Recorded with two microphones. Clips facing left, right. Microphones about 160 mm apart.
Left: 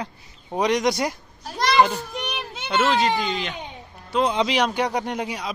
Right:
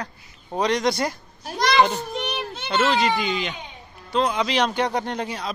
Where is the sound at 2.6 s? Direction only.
5° left (ahead or behind).